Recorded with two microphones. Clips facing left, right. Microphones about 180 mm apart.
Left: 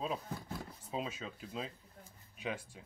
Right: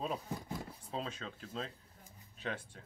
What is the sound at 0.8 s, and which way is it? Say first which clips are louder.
Speech: left 2 dB; 10° left (ahead or behind).